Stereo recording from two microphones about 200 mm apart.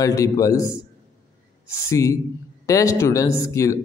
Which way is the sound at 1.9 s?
15° left (ahead or behind).